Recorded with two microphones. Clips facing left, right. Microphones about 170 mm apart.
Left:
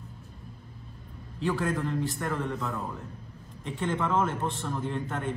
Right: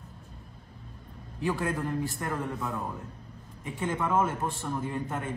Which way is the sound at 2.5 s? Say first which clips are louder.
Left 1 dB; centre (ahead or behind).